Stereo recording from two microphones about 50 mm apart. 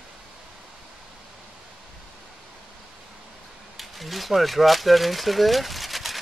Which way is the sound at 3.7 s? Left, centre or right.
Centre.